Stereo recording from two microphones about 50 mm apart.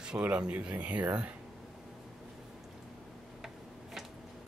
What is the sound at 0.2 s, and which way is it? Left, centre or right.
Speech, right.